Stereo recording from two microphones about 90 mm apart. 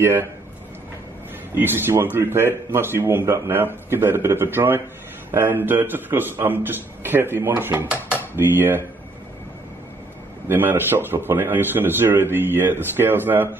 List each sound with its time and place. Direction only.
0.0 s a man's voice: 25° right (ahead or behind)
1.5 s a man's voice: 25° right (ahead or behind)
10.5 s a man's voice: 20° right (ahead or behind)